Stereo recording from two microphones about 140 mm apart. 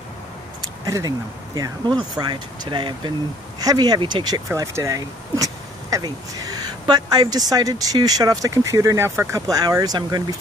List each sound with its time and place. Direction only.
0.8 s speech: 25° right (ahead or behind)